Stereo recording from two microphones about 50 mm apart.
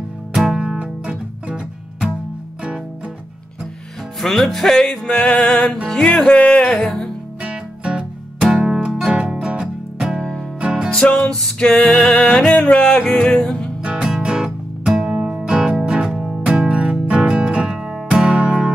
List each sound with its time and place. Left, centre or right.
0.5 s music: centre
4.2 s music: centre
5.2 s music: left
8.5 s music: centre
10.9 s music: left
11.1 s music: centre
11.7 s music: left
14.0 s music: centre